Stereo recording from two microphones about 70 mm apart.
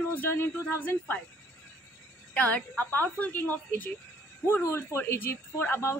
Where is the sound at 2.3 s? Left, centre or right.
Left.